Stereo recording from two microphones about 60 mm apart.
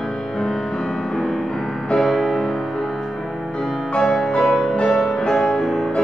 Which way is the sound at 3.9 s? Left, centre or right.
Centre.